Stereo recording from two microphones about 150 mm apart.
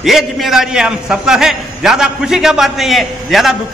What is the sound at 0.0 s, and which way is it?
A man's voice, centre (ahead or behind).